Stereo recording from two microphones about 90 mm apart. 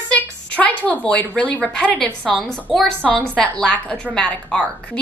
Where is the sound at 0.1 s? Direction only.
15° left (ahead or behind).